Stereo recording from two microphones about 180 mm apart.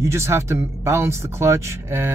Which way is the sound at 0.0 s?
15° right (ahead or behind).